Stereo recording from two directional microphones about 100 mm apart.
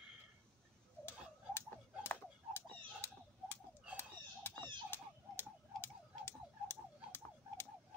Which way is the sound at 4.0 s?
20° left (ahead or behind).